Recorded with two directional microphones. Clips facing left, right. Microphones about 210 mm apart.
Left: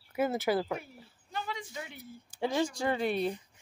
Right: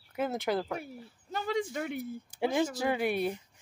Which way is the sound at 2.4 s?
5° right (ahead or behind).